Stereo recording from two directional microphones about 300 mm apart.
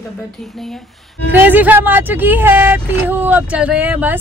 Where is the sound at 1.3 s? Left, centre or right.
Centre.